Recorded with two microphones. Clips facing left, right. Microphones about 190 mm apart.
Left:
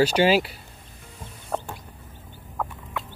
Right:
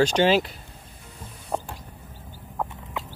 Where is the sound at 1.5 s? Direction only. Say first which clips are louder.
Even; 10° right (ahead or behind).